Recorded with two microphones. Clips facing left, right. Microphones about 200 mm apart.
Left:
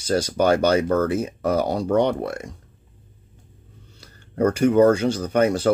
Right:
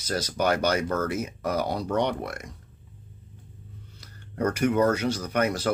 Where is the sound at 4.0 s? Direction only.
30° left (ahead or behind).